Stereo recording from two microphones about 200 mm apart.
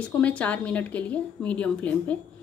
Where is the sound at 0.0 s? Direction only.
5° left (ahead or behind).